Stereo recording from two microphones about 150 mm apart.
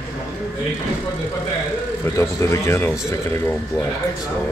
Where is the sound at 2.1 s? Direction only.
20° left (ahead or behind).